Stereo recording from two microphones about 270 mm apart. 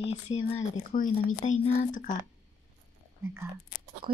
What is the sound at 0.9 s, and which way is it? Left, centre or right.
Speech, left.